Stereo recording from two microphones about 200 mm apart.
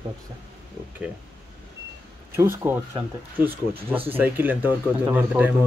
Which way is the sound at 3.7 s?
25° right (ahead or behind).